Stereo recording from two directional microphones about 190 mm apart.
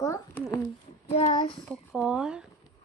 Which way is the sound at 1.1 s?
35° left (ahead or behind).